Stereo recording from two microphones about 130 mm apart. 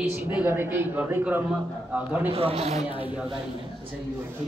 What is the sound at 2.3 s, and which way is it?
Speech, 50° right (ahead or behind).